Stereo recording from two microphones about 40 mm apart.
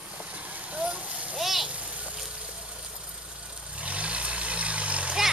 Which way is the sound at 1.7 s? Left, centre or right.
Right.